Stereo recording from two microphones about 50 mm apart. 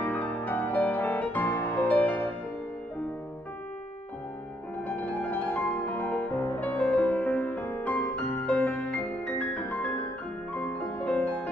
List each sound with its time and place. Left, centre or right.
0.0 s music: left
4.8 s music: left
6.3 s music: left
6.6 s music: left
7.1 s music: left